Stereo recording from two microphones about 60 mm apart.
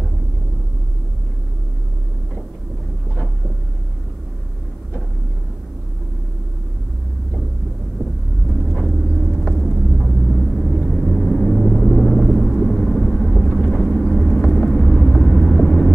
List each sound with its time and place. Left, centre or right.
8.7 s vehicle: centre
13.3 s vehicle: left
13.7 s vehicle: centre